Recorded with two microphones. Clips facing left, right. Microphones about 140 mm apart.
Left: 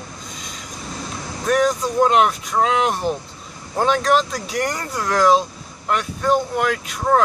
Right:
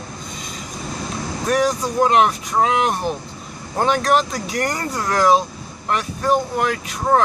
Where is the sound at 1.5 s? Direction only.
Centre (ahead or behind).